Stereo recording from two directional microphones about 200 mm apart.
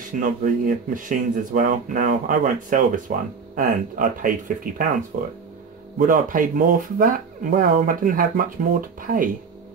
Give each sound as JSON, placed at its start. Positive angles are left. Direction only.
{"t": 0.2, "sound": "speech", "side_deg": -40}